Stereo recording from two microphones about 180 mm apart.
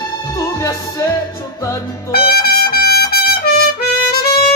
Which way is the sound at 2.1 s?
60° left (ahead or behind).